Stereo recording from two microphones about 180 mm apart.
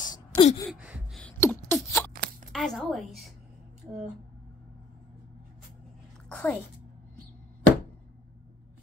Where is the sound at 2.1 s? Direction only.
55° right (ahead or behind).